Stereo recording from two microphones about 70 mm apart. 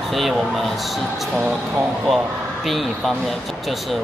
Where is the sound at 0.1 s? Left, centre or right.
Centre.